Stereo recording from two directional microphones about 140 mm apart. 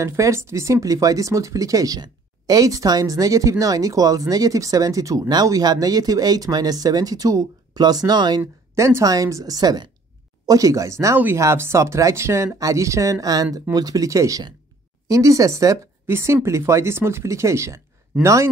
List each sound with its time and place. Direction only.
0.0 s speech: 20° right (ahead or behind)
8.4 s a woman's voice: 20° right (ahead or behind)